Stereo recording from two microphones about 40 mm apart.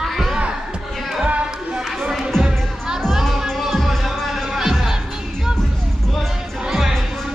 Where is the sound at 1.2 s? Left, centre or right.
Right.